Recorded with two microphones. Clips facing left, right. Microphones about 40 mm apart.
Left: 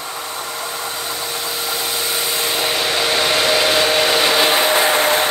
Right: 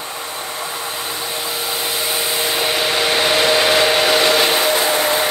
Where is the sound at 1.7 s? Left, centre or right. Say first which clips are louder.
Right 1 dB; centre.